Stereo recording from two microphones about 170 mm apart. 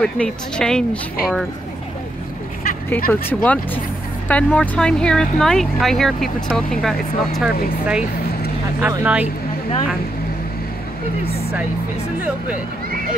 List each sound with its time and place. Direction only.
0.0 s speech: 5° left (ahead or behind)
3.1 s speech: 10° left (ahead or behind); by 9.3 s 10° right (ahead or behind)